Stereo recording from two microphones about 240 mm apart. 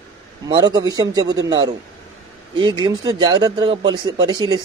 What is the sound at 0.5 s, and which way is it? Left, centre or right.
A man's voice, centre.